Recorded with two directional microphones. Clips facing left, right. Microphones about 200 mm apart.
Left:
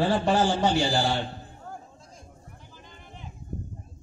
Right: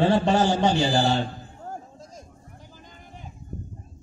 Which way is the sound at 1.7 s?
45° right (ahead or behind).